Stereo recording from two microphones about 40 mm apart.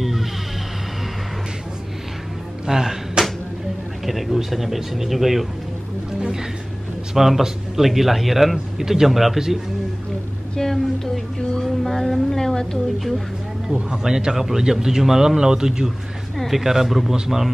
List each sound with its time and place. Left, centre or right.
0.0 s vehicle: centre
2.6 s a sound: centre
4.0 s speech: centre
7.2 s a man's voice: centre
10.5 s a sound: centre
11.6 s music: centre
13.7 s speech: centre